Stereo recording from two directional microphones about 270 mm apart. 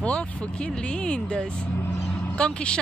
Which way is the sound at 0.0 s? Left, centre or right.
Centre.